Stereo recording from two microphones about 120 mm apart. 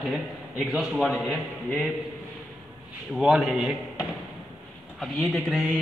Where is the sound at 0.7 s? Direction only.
Centre (ahead or behind).